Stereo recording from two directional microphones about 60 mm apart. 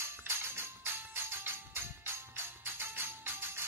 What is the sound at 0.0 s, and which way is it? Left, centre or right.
Music, right.